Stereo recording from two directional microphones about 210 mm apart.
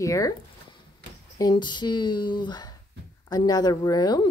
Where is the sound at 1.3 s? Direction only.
20° left (ahead or behind).